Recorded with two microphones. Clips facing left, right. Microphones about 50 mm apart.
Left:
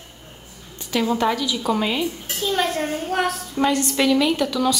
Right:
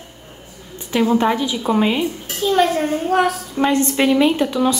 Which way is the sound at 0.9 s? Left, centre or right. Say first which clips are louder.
Right 4 dB; right.